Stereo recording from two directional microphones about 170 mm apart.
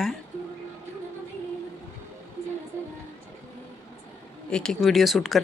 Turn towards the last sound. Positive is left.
turn(degrees=0)  # may be behind; listen again after turning